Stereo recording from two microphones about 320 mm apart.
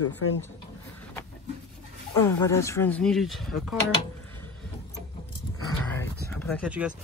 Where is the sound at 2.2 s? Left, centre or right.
Centre.